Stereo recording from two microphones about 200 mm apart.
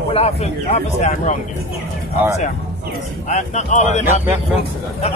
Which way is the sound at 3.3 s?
35° left (ahead or behind).